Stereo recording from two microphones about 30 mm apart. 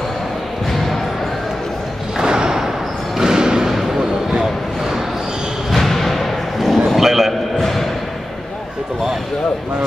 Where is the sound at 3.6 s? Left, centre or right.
Centre.